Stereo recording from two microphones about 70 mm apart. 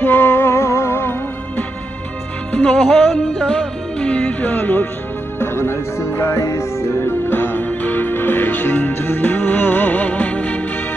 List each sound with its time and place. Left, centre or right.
0.0 s music: left
2.5 s music: centre